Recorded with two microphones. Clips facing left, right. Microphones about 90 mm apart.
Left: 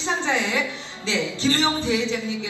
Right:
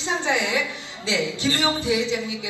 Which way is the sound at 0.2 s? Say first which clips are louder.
Even; 15° right (ahead or behind).